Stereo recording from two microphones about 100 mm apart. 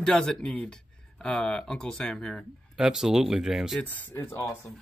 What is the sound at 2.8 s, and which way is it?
Speech, 5° right (ahead or behind).